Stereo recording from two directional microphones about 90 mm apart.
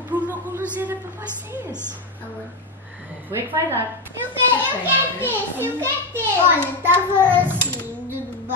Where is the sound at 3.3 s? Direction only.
25° right (ahead or behind).